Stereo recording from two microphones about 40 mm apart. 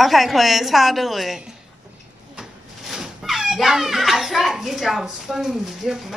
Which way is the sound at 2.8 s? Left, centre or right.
Centre.